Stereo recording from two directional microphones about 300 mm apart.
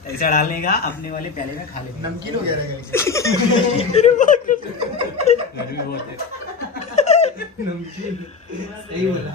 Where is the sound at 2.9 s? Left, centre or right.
Centre; by 4.6 s left.